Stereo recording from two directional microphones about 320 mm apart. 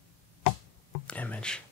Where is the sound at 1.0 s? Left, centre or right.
Centre.